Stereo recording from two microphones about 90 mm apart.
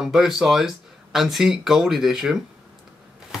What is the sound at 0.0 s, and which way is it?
Speech, 5° right (ahead or behind).